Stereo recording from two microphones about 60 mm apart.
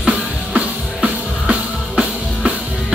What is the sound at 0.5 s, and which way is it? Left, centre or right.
Music, centre.